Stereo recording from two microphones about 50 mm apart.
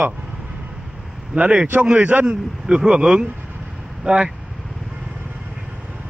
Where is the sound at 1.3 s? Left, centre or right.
Right.